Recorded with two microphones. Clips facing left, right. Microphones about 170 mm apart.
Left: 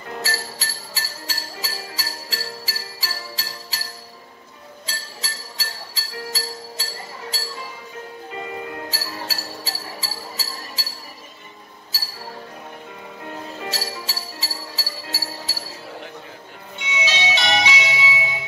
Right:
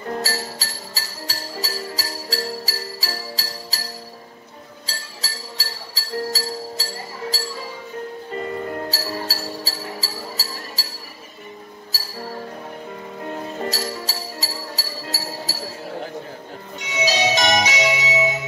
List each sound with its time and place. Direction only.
0.1 s music: 35° right (ahead or behind)
4.8 s music: 35° right (ahead or behind)
11.9 s music: 40° right (ahead or behind)
13.2 s jingle bell: 40° right (ahead or behind)
16.7 s music: 40° right (ahead or behind)